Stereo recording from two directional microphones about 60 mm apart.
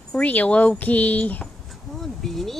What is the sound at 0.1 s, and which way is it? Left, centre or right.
Speech, left.